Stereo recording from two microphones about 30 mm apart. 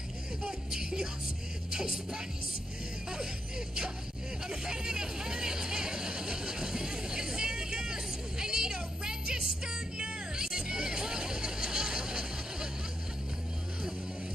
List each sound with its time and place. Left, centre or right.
0.5 s a sound: right
1.7 s music: right
3.1 s speech: right
4.5 s vehicle: right